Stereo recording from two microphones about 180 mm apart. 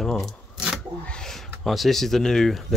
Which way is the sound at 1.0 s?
5° left (ahead or behind).